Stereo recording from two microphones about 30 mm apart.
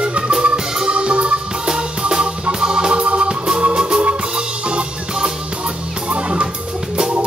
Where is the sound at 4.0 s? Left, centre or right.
Right.